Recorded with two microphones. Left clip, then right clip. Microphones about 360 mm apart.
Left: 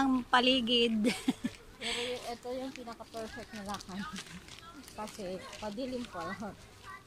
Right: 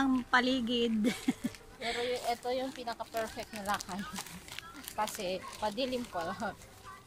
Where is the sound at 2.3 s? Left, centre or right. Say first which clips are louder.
Right 5 dB; right.